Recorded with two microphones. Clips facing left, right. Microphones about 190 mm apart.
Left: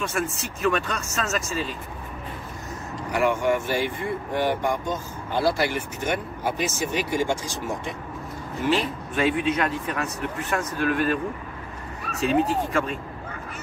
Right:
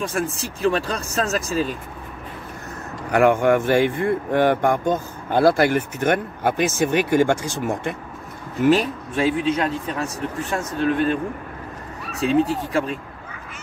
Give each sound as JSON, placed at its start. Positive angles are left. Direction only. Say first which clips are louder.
{"t": 0.0, "sound": "a man's voice", "louder": "right 3 dB", "side_deg": -35}
{"t": 3.1, "sound": "speech", "louder": "right 6 dB", "side_deg": -55}
{"t": 8.6, "sound": "a man's voice", "louder": "right 7 dB", "side_deg": -35}